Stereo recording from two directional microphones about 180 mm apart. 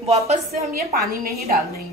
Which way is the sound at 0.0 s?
35° right (ahead or behind).